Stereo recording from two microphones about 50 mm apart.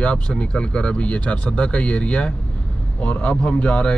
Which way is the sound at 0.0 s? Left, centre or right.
Left.